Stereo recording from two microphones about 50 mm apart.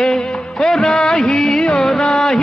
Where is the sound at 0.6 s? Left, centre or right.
Centre.